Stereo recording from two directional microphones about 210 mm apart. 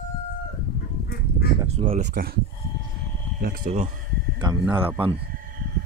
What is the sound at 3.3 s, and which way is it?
Speech, 45° right (ahead or behind).